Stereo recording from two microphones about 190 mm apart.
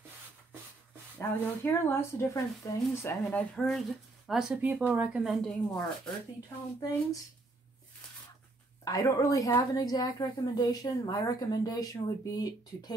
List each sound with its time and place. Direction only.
1.1 s speech: 10° left (ahead or behind)
8.8 s a woman's voice: 15° left (ahead or behind)